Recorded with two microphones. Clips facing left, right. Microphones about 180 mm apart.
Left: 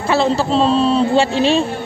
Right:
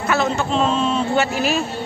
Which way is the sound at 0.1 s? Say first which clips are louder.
Left 5 dB; 30° left (ahead or behind).